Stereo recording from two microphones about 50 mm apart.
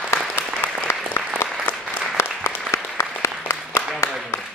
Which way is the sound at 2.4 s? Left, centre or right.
Left.